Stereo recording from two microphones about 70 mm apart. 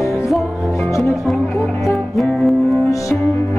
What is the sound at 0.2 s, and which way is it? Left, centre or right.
Music, centre.